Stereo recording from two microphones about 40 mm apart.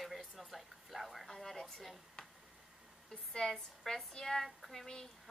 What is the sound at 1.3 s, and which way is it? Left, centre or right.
Speech, centre.